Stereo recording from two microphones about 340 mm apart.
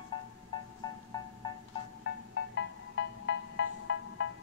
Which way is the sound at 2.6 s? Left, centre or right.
Left.